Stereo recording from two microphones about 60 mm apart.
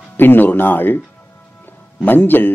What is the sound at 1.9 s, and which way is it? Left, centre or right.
Speech, left.